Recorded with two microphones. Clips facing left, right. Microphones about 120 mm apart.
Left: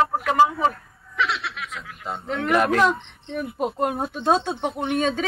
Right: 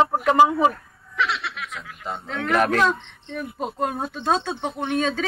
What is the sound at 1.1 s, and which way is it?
Snicker, centre (ahead or behind).